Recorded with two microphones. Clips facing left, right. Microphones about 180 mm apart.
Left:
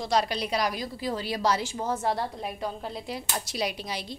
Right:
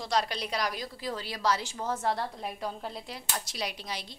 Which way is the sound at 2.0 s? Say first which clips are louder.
Left 2 dB; 5° left (ahead or behind).